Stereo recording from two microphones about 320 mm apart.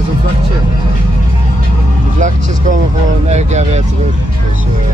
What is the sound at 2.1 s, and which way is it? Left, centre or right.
Vehicle, right.